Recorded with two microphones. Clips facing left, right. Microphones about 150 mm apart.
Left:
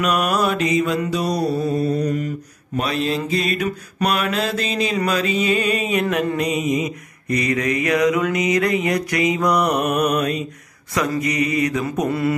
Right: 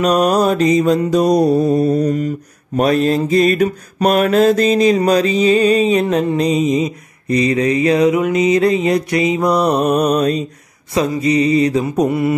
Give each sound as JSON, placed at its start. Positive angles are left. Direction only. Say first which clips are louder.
{"t": 0.0, "sound": "mantra", "louder": "right 6 dB", "side_deg": -40}